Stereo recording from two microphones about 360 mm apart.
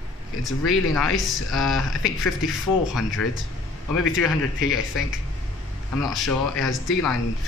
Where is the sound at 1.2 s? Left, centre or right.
Centre.